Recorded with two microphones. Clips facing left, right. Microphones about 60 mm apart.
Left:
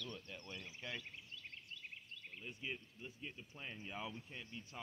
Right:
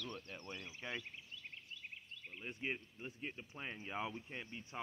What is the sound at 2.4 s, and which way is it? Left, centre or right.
Speech, right.